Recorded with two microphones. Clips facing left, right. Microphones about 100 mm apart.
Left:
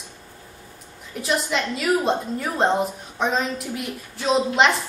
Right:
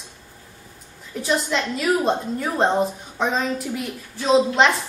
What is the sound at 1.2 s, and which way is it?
A woman's voice, centre (ahead or behind).